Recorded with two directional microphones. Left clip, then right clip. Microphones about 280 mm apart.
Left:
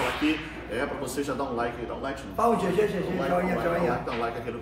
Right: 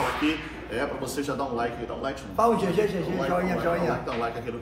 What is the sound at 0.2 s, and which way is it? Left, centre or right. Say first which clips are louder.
A man's voice: even; centre.